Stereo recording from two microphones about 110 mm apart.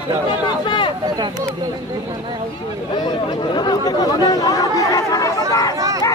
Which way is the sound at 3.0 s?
40° left (ahead or behind).